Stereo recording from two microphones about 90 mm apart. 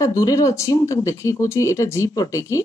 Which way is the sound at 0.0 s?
40° left (ahead or behind).